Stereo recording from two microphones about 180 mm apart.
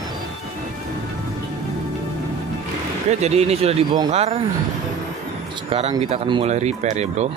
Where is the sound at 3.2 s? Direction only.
35° right (ahead or behind).